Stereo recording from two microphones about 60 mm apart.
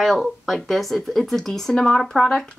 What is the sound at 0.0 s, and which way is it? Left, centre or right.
A woman's voice, centre.